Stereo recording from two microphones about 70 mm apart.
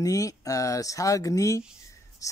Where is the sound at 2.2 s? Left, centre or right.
Left.